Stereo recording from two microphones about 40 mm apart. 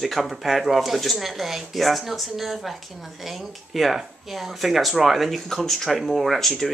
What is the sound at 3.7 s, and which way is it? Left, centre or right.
Speech, centre.